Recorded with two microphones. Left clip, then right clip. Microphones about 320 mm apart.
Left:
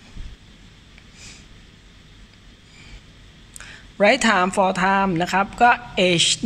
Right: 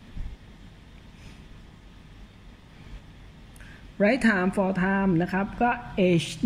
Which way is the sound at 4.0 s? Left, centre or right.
Left.